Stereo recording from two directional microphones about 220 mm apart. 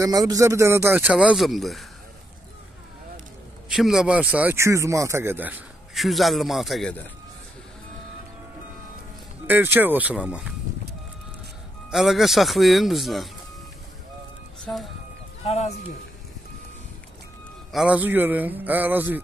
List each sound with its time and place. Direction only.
0.0 s speech: 15° right (ahead or behind); by 1.9 s centre (ahead or behind)
3.6 s speech: centre (ahead or behind)
9.5 s speech: 10° right (ahead or behind)
11.9 s speech: centre (ahead or behind)
14.6 s speech: centre (ahead or behind)
15.4 s speech: 30° left (ahead or behind)
17.7 s speech: 5° right (ahead or behind)